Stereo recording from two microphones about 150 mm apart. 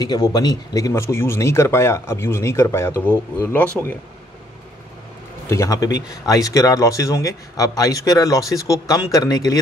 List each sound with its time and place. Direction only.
0.0 s speech: 25° left (ahead or behind)
5.5 s speech: 20° left (ahead or behind)